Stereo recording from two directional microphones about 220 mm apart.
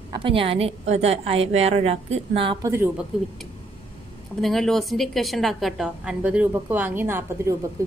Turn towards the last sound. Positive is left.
turn(degrees=-10)  # may be behind; listen again after turning